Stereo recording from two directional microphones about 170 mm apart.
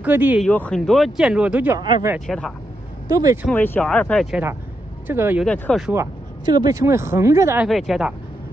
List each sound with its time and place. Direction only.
0.0 s speech: 10° right (ahead or behind)
0.4 s speech: 5° left (ahead or behind); by 1.8 s 10° right (ahead or behind)
2.1 s speech: 5° left (ahead or behind)
3.1 s speech: 20° right (ahead or behind)
3.5 s speech: 10° left (ahead or behind)
5.0 s speech: 15° right (ahead or behind)
5.4 s speech: 5° left (ahead or behind)
5.9 s speech: 25° right (ahead or behind)
7.6 s speech: centre (ahead or behind)